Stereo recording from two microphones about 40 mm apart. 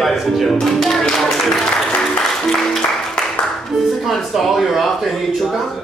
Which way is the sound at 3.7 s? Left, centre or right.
Centre.